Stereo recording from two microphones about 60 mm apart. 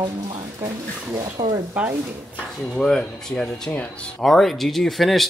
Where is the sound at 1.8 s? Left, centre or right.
Right.